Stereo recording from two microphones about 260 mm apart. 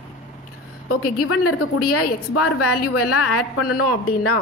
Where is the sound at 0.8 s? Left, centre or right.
Left.